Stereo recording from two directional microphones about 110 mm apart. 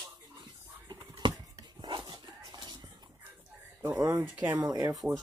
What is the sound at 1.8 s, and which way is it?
Dog, 45° right (ahead or behind).